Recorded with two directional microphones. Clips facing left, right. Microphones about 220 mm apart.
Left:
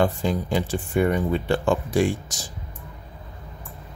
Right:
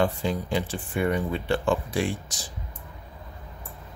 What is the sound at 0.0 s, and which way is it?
Speech, 40° left (ahead or behind).